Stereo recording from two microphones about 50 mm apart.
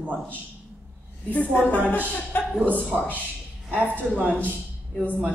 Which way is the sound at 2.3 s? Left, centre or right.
Left.